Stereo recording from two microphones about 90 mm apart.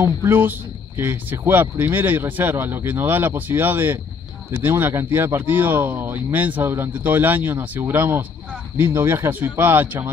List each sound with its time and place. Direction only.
0.0 s speech: 25° right (ahead or behind)